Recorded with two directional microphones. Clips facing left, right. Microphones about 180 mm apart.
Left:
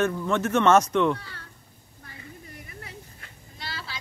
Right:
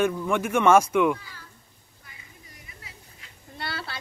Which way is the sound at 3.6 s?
60° right (ahead or behind).